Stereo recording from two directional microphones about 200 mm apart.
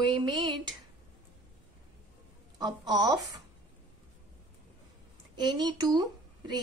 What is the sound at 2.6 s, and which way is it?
Speech, 20° right (ahead or behind).